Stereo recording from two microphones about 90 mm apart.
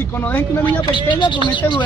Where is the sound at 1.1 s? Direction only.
60° left (ahead or behind).